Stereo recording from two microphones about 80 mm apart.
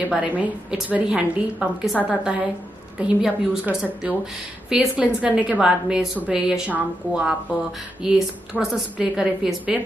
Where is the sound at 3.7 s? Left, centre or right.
Right.